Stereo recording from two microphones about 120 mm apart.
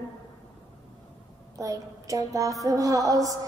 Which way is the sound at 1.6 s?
30° right (ahead or behind).